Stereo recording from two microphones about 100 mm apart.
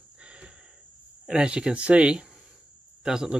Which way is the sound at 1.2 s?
10° right (ahead or behind).